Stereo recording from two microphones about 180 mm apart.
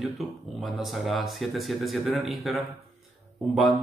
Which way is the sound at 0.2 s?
Centre (ahead or behind).